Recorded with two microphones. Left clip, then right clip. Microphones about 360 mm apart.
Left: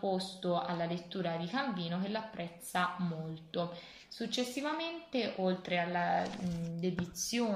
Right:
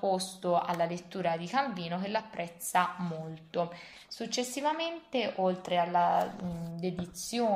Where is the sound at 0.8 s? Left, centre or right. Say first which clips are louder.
Right 5 dB; centre.